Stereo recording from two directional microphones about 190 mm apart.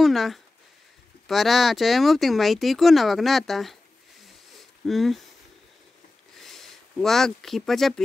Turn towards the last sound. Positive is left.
turn(degrees=0)  # may be behind; listen again after turning